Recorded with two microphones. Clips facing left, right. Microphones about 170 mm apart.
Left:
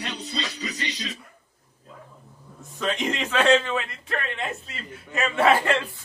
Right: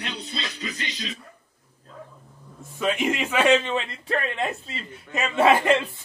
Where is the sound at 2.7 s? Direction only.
10° right (ahead or behind).